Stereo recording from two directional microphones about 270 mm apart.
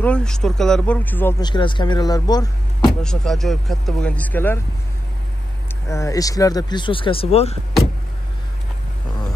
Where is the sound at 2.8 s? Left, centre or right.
Centre.